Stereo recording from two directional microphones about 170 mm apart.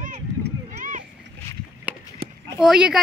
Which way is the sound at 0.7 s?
45° right (ahead or behind).